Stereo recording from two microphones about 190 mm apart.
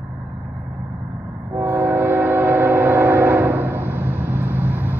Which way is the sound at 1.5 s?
15° right (ahead or behind).